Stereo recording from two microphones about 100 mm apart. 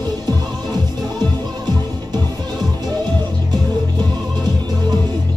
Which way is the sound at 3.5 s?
45° right (ahead or behind).